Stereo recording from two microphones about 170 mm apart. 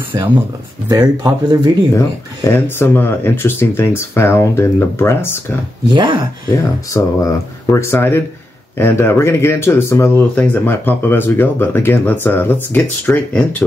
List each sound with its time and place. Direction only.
0.1 s speech: 15° right (ahead or behind)
2.0 s speech: 15° left (ahead or behind)
5.9 s speech: 25° right (ahead or behind)
6.5 s speech: 15° left (ahead or behind)